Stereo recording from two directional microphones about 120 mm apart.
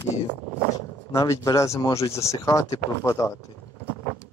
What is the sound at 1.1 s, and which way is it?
Speech, 25° left (ahead or behind).